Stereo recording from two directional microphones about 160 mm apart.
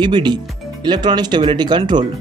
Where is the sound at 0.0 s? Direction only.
30° right (ahead or behind).